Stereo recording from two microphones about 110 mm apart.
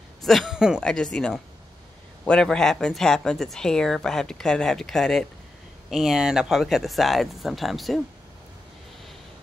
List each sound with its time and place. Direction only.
0.2 s speech: centre (ahead or behind)
0.7 s a woman's voice: 5° left (ahead or behind)